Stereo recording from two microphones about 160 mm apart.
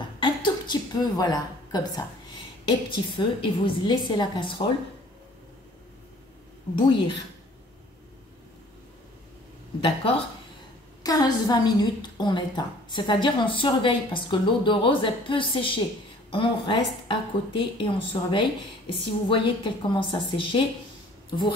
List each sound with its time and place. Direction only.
0.2 s a woman's voice: 30° left (ahead or behind)
6.7 s a woman's voice: 30° left (ahead or behind)
9.8 s a woman's voice: 35° left (ahead or behind)